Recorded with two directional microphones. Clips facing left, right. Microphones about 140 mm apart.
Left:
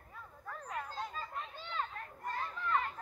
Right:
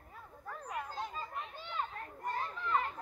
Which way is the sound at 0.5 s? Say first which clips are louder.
Right 1 dB; 15° right (ahead or behind).